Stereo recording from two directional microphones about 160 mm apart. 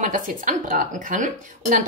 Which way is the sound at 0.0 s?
55° right (ahead or behind).